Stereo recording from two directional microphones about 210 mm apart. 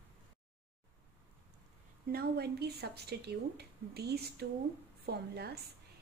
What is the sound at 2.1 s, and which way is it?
Speech, 50° right (ahead or behind).